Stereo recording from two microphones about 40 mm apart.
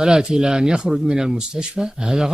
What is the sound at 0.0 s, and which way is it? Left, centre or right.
Speech, centre.